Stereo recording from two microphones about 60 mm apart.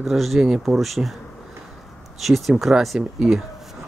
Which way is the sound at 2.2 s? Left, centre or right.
Centre.